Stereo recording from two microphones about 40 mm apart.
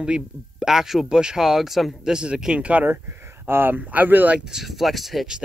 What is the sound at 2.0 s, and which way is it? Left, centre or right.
Speech, centre.